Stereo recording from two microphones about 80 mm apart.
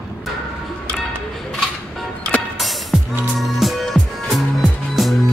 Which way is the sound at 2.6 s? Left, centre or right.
Centre.